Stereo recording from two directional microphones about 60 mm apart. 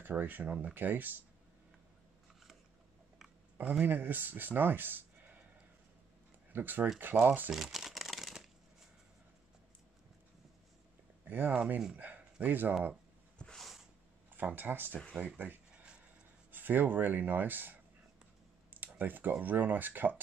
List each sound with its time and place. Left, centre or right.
0.0 s speech: right
3.8 s speech: right
6.5 s speech: right
7.5 s crumpling: centre
11.2 s speech: right
12.0 s a sound: right
13.6 s a sound: centre
14.3 s speech: right
15.7 s a sound: centre
16.5 s speech: right
18.7 s a sound: right
19.4 s speech: right